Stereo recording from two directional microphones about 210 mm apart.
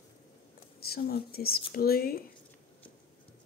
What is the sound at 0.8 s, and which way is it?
Speech, 45° left (ahead or behind).